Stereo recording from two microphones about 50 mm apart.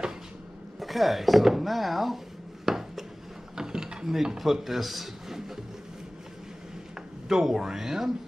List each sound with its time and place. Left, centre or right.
0.7 s speech: centre
2.6 s chopping: centre
3.5 s a sound: centre
7.2 s speech: centre